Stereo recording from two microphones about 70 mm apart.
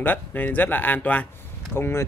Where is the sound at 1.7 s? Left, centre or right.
Left.